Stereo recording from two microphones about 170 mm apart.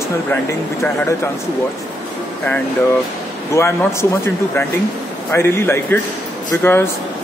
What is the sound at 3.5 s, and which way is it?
Speech, 15° left (ahead or behind).